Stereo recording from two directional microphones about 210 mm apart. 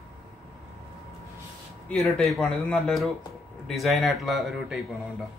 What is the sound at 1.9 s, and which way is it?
Speech, centre (ahead or behind).